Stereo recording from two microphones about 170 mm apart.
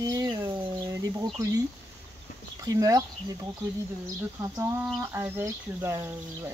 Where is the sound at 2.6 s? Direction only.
20° right (ahead or behind).